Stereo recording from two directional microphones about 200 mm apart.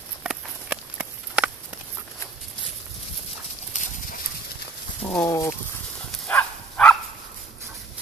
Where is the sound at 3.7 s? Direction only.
40° left (ahead or behind).